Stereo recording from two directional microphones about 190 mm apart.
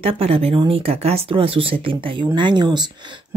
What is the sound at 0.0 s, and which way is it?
Speech, 30° right (ahead or behind).